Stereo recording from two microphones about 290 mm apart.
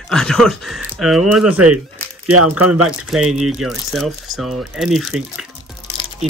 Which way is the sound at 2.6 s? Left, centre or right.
Right.